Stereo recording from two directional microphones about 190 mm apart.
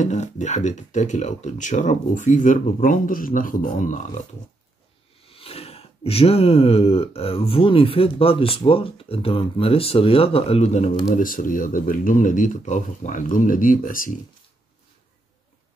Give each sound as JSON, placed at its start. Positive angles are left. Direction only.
{"t": 0.0, "sound": "speech", "side_deg": 40}
{"t": 5.2, "sound": "speech", "side_deg": 30}